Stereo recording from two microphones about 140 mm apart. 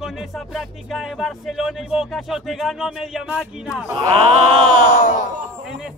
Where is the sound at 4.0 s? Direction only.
40° right (ahead or behind).